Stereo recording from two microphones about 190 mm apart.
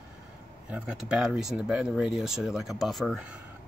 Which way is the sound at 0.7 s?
5° right (ahead or behind).